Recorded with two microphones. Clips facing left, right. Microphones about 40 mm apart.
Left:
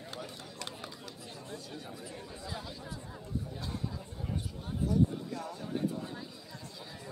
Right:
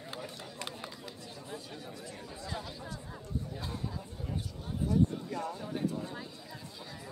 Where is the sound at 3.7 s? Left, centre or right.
Centre.